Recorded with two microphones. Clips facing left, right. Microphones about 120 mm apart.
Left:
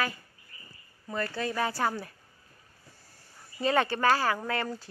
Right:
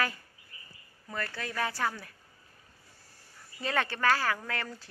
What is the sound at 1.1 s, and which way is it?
Speech, 25° left (ahead or behind).